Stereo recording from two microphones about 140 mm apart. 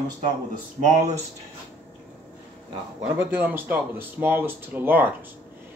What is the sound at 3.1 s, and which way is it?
Speech, 15° right (ahead or behind).